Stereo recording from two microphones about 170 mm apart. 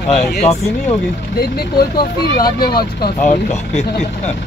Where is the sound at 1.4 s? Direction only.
65° left (ahead or behind).